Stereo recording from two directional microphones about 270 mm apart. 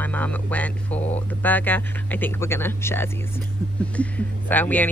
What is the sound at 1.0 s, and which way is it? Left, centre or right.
Speech, left.